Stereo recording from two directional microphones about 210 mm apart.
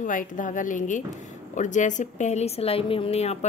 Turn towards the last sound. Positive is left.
turn(degrees=30)  # may be behind; listen again after turning